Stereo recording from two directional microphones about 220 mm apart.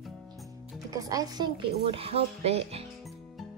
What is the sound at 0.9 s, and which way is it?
Speech, 15° right (ahead or behind).